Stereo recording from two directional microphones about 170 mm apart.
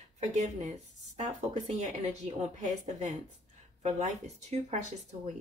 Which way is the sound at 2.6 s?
45° right (ahead or behind).